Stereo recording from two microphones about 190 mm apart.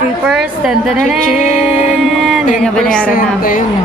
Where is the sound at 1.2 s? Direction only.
40° left (ahead or behind).